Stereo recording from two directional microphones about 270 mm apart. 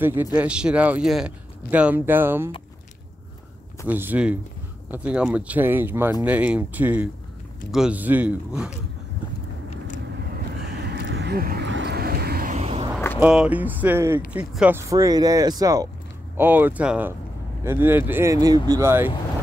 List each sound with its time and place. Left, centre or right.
0.0 s speech: centre
3.8 s speech: centre
10.7 s vehicle: right
13.2 s speech: centre